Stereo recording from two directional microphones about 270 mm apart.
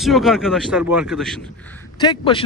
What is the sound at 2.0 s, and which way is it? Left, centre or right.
Speech, centre.